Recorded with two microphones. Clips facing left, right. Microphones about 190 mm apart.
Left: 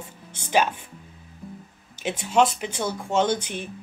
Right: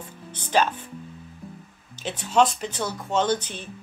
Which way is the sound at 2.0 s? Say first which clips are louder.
Even; 10° left (ahead or behind).